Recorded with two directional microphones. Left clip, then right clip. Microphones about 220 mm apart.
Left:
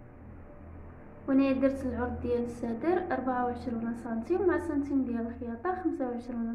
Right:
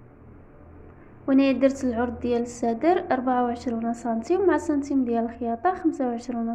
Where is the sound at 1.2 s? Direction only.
35° right (ahead or behind).